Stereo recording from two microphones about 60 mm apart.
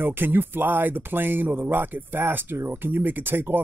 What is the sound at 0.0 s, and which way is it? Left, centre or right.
Speech, right.